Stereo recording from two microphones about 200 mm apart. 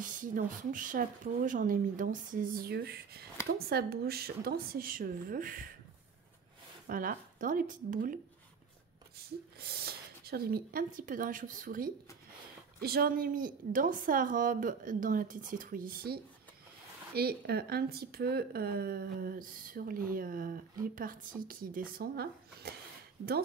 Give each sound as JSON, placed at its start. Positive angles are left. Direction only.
{"t": 0.0, "sound": "speech", "side_deg": -40}
{"t": 6.9, "sound": "speech", "side_deg": -45}
{"t": 9.6, "sound": "speech", "side_deg": -50}